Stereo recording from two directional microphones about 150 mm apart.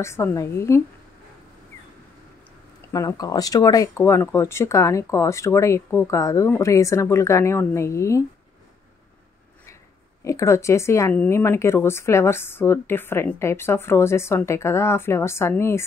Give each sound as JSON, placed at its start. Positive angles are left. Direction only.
{"t": 0.0, "sound": "speech", "side_deg": 15}
{"t": 2.9, "sound": "speech", "side_deg": 25}
{"t": 10.2, "sound": "speech", "side_deg": 20}